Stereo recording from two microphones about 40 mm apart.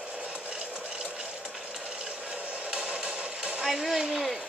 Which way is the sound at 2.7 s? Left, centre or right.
Right.